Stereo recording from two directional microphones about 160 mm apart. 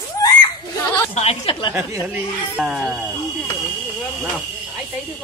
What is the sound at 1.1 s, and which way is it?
Speech, 35° left (ahead or behind).